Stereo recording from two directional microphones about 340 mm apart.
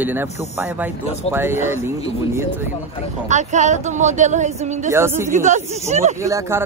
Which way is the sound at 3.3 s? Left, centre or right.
Right.